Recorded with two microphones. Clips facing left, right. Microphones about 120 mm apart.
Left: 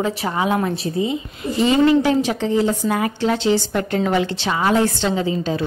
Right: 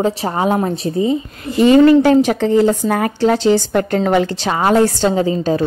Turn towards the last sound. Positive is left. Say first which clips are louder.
# right 5 dB
turn(degrees=-40)  # may be behind; listen again after turning